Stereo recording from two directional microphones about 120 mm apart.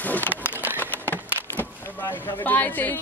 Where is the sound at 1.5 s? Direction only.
15° left (ahead or behind).